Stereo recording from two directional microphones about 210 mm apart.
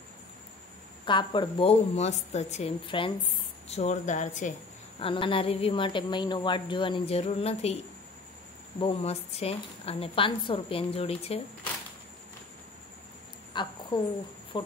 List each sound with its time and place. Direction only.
1.0 s speech: 20° left (ahead or behind)
5.0 s speech: 25° left (ahead or behind)
13.5 s a sound: 20° left (ahead or behind)
14.5 s speech: 20° left (ahead or behind)